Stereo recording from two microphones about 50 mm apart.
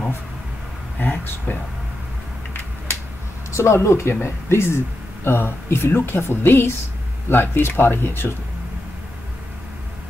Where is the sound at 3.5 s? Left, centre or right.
Left.